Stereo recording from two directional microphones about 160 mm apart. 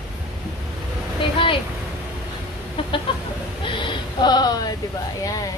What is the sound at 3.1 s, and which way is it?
Chicken, 30° left (ahead or behind).